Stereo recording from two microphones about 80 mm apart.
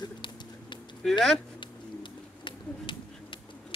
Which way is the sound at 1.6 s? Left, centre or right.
Left.